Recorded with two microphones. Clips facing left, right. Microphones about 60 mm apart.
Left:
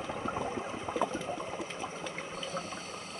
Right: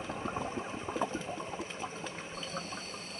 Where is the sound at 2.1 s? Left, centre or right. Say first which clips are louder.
Left 3 dB; left.